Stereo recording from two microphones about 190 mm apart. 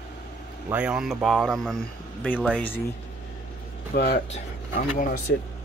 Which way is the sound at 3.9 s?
55° left (ahead or behind).